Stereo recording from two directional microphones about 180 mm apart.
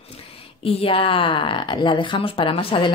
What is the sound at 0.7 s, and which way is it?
A woman's voice, 30° left (ahead or behind).